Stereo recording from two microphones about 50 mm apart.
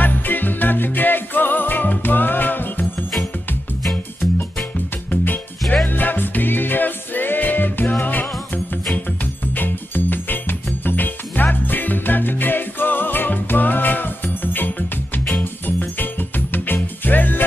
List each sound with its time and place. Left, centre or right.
0.0 s music: left
5.1 s music: left